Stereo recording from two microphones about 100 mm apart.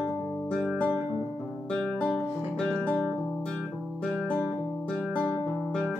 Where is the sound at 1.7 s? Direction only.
10° left (ahead or behind).